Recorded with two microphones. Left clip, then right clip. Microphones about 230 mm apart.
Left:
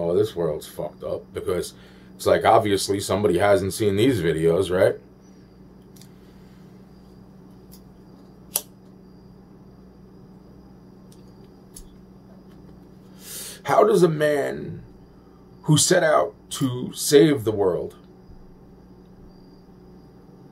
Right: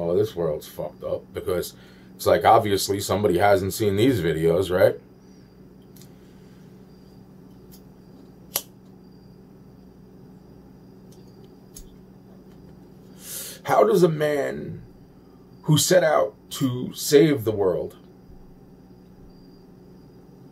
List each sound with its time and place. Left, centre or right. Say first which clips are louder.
0.0 s speech: left 1 dB; centre
13.2 s gasp: left 1 dB; centre
15.6 s speech: even; centre